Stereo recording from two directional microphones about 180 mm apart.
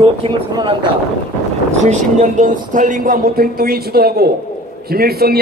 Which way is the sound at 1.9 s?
40° right (ahead or behind).